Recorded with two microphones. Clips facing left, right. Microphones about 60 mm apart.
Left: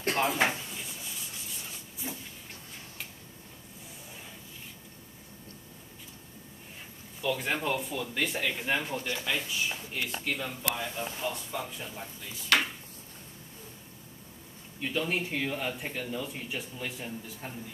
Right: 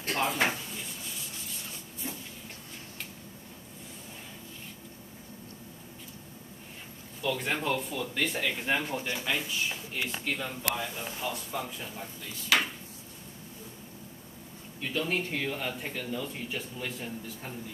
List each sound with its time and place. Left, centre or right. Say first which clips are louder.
0.1 s a sound: left 1 dB; centre
2.0 s train: even; centre
7.2 s speech: even; centre
8.9 s speech: right 1 dB; centre
14.8 s speech: even; centre